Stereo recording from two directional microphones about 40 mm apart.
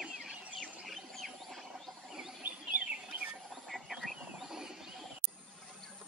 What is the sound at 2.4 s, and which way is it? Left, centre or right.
Bird, right.